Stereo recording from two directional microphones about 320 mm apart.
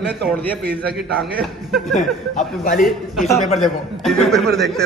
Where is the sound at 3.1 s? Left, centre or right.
Centre.